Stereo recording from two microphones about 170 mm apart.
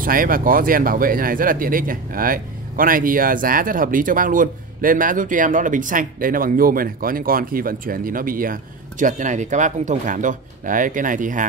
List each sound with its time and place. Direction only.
0.0 s speech: 55° right (ahead or behind)